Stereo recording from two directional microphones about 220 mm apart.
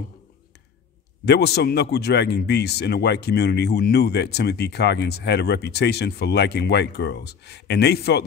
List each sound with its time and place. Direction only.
1.2 s a man's voice: 50° left (ahead or behind)